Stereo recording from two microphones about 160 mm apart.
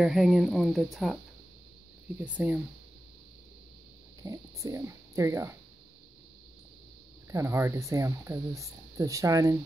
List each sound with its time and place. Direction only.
0.0 s speech: centre (ahead or behind)
2.2 s speech: 10° right (ahead or behind)
4.2 s speech: 20° right (ahead or behind)
7.2 s speech: 20° right (ahead or behind)